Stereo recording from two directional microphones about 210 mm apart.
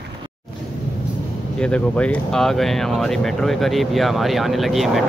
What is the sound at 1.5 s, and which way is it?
Speech, 5° left (ahead or behind).